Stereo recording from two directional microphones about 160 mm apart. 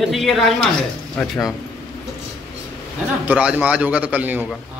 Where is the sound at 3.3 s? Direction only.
5° right (ahead or behind).